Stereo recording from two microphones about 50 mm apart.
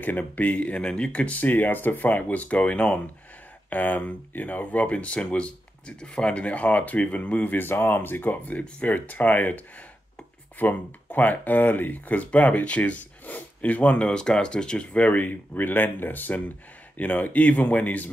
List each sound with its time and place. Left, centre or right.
0.0 s speech: left
3.7 s speech: left
10.6 s speech: left